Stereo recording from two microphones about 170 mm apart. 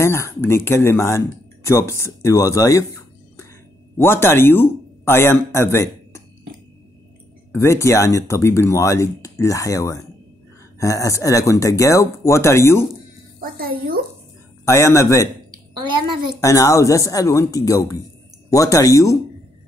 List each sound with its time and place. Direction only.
0.0 s speech: 15° left (ahead or behind)
7.5 s speech: 15° left (ahead or behind)
13.4 s a woman's voice: 60° right (ahead or behind)
14.6 s speech: 15° left (ahead or behind)
15.5 s a woman's voice: 25° right (ahead or behind)
16.3 s speech: 20° left (ahead or behind)